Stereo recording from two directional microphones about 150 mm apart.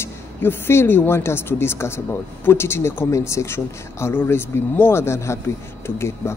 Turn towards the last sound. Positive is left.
turn(degrees=15)  # may be behind; listen again after turning